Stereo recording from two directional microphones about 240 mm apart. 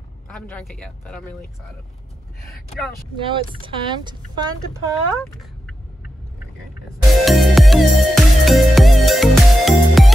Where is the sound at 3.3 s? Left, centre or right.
Right.